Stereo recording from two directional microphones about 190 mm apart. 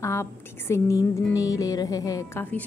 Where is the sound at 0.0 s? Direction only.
15° left (ahead or behind).